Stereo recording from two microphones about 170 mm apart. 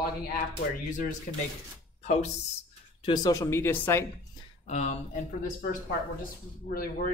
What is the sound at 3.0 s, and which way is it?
Speech, 20° left (ahead or behind).